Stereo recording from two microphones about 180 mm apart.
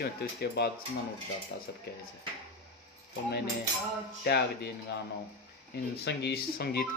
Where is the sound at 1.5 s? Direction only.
75° left (ahead or behind).